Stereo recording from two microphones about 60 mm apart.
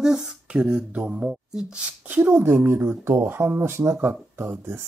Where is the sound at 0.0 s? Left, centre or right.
Centre.